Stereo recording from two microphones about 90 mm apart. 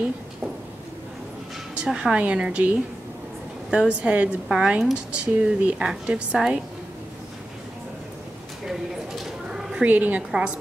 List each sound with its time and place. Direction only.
1.8 s a woman's voice: 10° right (ahead or behind)
9.2 s a sound: 5° right (ahead or behind)
9.8 s a woman's voice: 15° right (ahead or behind)